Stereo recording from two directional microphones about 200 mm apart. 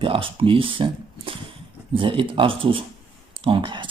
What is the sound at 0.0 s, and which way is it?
Speech, 25° right (ahead or behind).